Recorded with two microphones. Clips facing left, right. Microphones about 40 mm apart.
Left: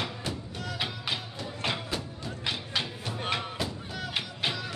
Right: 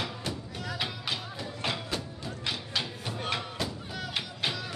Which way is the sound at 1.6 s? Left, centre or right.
Centre.